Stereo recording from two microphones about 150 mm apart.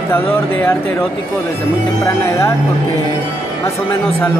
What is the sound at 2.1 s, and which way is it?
Speech, 15° left (ahead or behind).